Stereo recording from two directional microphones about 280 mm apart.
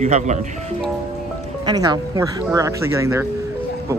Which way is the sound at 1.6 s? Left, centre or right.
Centre.